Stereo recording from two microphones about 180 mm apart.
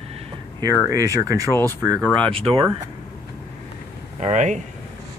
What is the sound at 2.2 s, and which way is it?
Speech, 30° right (ahead or behind).